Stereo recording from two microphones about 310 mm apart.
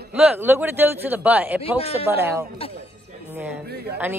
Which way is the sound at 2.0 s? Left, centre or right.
Centre.